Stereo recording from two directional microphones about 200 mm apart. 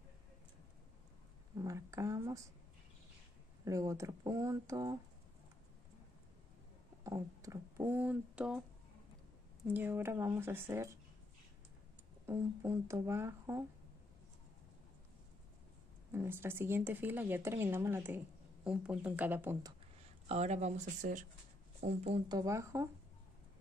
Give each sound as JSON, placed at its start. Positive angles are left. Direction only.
{"t": 1.6, "sound": "speech", "side_deg": -15}
{"t": 3.6, "sound": "speech", "side_deg": -15}
{"t": 7.0, "sound": "speech", "side_deg": -15}
{"t": 9.7, "sound": "speech", "side_deg": -10}
{"t": 12.3, "sound": "speech", "side_deg": -15}
{"t": 16.1, "sound": "speech", "side_deg": -10}
{"t": 20.2, "sound": "speech", "side_deg": -35}
{"t": 22.4, "sound": "speech", "side_deg": -15}